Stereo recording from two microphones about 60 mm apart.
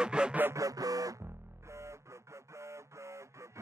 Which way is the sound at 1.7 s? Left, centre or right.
Right.